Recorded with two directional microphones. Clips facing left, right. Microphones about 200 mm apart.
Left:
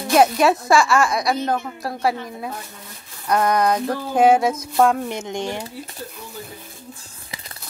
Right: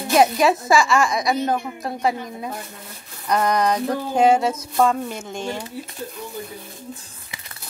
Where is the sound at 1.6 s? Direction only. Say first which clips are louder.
Even; 15° right (ahead or behind).